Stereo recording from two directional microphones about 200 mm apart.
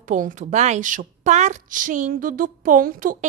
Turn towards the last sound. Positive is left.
turn(degrees=-45)  # may be behind; listen again after turning